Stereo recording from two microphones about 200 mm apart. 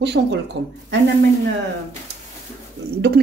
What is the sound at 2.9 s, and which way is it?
Speech, 55° right (ahead or behind).